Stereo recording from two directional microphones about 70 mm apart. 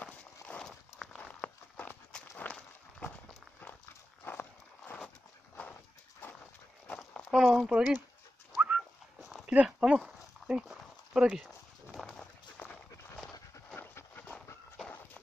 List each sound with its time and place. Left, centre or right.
0.0 s horse: centre
0.7 s walk: centre
1.4 s a sound: left
4.2 s horse: left
5.6 s dog: left
6.2 s horse: left
7.2 s a sound: centre
8.6 s dog: centre
9.5 s speech: centre
12.1 s run: centre
13.7 s clip-clop: left